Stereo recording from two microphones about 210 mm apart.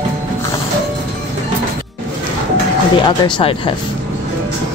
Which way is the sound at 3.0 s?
20° left (ahead or behind).